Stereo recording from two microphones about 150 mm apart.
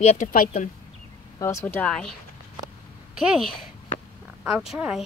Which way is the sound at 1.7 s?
5° left (ahead or behind).